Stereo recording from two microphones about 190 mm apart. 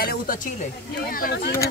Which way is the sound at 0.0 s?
50° left (ahead or behind).